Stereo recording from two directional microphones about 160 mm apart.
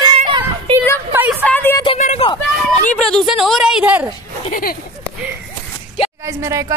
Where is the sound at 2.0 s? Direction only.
50° left (ahead or behind).